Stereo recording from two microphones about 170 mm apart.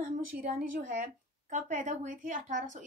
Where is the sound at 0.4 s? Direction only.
50° right (ahead or behind).